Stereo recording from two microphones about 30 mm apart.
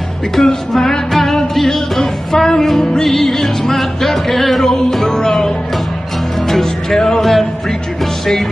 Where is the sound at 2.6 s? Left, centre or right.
Centre.